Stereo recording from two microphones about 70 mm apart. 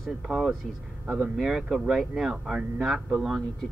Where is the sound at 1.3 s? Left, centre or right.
Centre.